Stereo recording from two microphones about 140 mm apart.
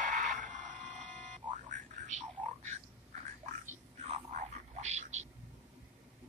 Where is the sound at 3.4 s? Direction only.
60° right (ahead or behind).